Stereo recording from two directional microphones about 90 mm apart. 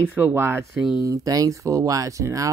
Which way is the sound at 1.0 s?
40° right (ahead or behind).